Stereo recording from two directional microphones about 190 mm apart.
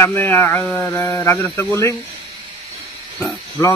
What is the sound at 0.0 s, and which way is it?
Speech, 10° left (ahead or behind).